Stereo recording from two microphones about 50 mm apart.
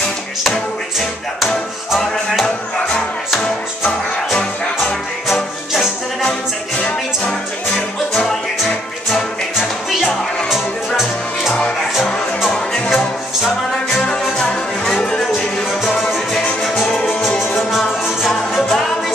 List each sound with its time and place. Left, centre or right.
0.4 s music: centre
5.3 s music: centre
6.8 s music: centre
9.1 s music: centre
12.4 s music: centre
14.0 s music: centre
14.9 s music: centre
16.7 s music: centre
17.6 s music: centre